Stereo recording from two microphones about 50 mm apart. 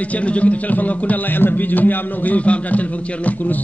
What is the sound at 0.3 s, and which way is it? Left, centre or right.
Music, left.